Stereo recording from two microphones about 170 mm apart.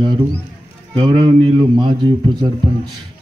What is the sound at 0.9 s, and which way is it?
Speech, 30° right (ahead or behind).